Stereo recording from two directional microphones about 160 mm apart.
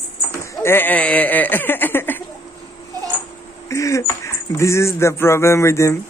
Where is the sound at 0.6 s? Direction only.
10° left (ahead or behind).